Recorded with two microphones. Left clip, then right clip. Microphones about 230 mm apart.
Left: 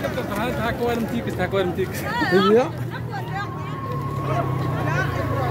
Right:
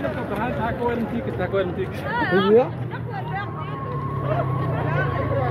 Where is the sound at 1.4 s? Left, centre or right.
Left.